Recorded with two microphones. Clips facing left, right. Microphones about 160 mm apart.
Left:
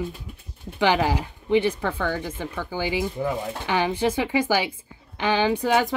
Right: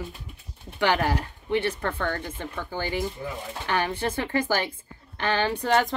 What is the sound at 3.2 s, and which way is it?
Speech, 65° left (ahead or behind).